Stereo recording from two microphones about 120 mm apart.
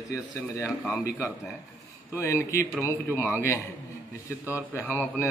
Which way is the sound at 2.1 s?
25° left (ahead or behind).